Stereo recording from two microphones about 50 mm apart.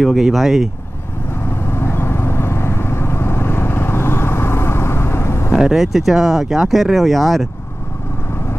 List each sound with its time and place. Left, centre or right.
0.0 s speech: centre
1.4 s vehicle: left
5.5 s speech: centre